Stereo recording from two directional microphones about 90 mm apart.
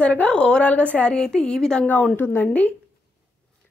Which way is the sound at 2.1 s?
20° left (ahead or behind).